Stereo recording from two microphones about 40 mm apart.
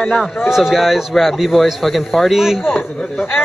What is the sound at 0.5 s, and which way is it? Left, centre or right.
Speech, centre.